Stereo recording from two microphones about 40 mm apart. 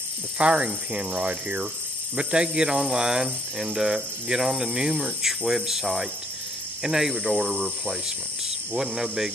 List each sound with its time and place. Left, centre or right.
0.4 s hum: right
2.1 s speech: right